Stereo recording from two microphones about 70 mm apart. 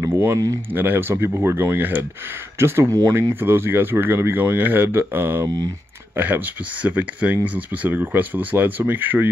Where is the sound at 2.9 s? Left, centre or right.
Right.